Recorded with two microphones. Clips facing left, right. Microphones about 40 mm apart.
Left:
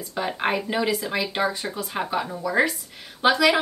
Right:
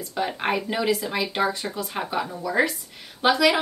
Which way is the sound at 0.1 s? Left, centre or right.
Centre.